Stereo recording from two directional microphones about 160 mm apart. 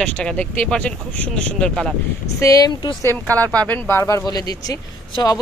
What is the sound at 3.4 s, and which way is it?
Speech, 10° left (ahead or behind).